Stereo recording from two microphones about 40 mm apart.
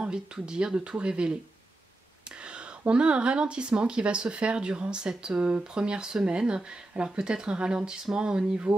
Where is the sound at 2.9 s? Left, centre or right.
Right.